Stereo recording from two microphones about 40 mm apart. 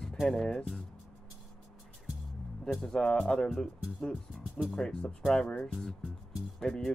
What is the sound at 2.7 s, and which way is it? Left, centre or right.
Speech, left.